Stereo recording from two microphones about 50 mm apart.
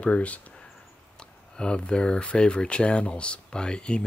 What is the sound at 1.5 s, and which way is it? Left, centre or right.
Speech, centre.